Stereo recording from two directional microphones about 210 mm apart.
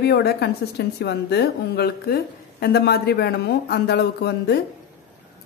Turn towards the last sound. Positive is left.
turn(degrees=50)  # may be behind; listen again after turning